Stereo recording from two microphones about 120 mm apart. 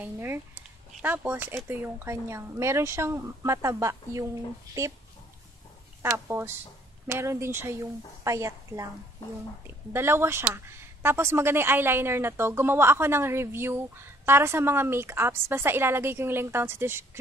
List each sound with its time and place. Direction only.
0.0 s speech: 20° right (ahead or behind)
6.0 s speech: 20° right (ahead or behind)
9.9 s speech: 20° right (ahead or behind)